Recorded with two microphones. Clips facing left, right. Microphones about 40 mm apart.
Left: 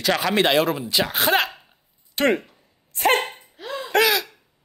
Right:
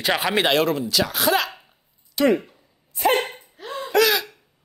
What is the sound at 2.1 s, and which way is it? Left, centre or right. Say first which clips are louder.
Speech: right 1 dB; left.